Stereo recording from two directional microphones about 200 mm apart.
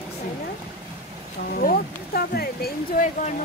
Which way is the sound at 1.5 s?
50° left (ahead or behind).